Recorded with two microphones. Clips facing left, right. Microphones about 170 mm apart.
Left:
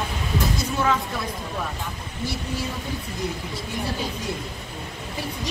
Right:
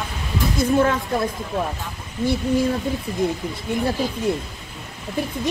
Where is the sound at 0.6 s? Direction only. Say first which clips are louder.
Right 9 dB; 50° right (ahead or behind).